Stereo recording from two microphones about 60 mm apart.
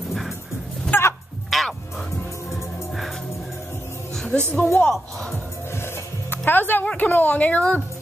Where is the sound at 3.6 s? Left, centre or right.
Left.